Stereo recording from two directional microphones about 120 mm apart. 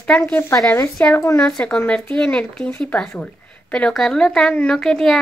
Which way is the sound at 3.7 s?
5° left (ahead or behind).